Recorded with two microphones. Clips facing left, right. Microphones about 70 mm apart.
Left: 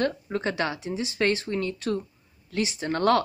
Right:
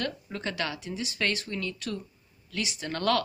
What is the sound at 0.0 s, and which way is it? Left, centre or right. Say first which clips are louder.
A woman's voice: left 7 dB; left.